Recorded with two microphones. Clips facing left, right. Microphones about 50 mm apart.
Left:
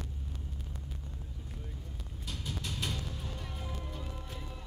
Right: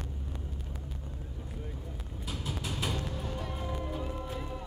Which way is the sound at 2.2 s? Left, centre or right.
Centre.